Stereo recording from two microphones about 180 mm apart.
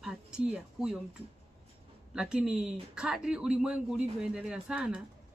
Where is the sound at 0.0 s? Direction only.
5° right (ahead or behind).